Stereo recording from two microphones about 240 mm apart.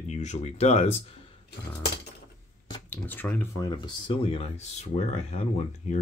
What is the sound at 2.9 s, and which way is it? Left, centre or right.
Speech, centre.